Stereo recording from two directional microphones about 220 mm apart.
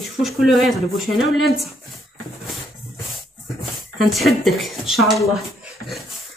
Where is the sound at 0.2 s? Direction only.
Centre (ahead or behind).